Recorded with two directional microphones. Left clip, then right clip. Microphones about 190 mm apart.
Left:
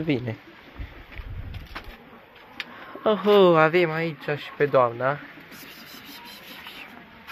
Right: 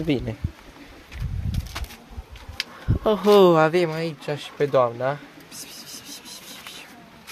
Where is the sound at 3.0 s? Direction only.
30° right (ahead or behind); by 5.2 s 5° right (ahead or behind).